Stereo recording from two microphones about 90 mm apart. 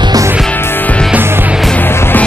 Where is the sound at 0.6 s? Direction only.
25° left (ahead or behind).